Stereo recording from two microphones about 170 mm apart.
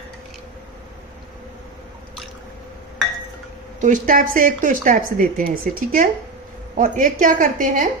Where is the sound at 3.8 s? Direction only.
50° right (ahead or behind).